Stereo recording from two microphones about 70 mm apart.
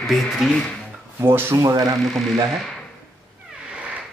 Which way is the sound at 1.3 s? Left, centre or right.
Right.